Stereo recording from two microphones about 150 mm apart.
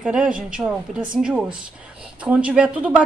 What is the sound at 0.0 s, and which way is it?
Speech, 5° right (ahead or behind).